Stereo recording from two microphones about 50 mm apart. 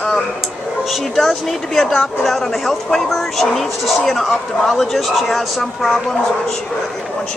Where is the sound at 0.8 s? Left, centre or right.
Centre.